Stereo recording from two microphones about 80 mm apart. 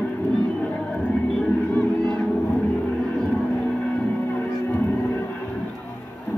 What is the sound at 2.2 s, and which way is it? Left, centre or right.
Vehicle, centre.